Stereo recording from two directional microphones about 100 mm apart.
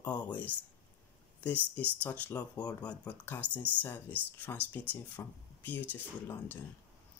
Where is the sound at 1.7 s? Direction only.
15° left (ahead or behind).